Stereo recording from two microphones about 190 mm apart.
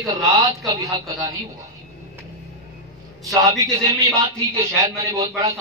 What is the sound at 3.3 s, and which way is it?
A man's voice, 15° right (ahead or behind).